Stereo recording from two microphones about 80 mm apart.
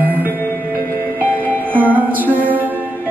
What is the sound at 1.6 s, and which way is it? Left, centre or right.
Music, right.